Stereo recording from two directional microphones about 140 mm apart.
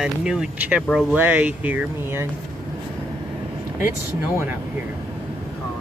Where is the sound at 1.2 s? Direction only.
10° right (ahead or behind).